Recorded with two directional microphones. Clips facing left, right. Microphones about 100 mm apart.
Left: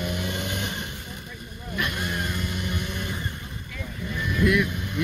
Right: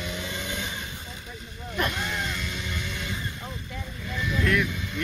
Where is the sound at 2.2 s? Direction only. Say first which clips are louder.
Left 2 dB; 50° left (ahead or behind).